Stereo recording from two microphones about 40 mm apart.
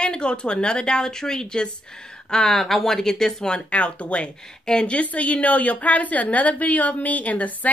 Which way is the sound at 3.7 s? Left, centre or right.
Left.